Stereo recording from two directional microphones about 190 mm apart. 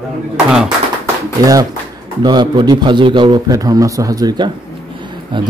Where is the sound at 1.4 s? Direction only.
20° right (ahead or behind).